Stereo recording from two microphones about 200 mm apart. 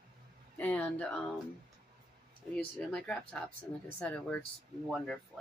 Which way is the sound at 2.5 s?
5° left (ahead or behind).